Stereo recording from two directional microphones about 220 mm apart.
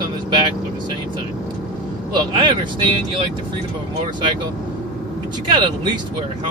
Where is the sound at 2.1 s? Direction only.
20° right (ahead or behind).